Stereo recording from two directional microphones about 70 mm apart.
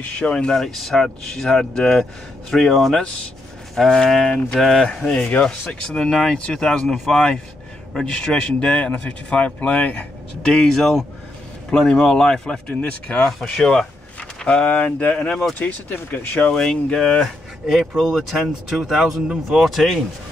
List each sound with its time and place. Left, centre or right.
0.2 s speech: centre
0.6 s speech: centre; by 10.0 s left
10.4 s speech: centre
15.1 s speech: centre
15.6 s speech: left
16.5 s speech: centre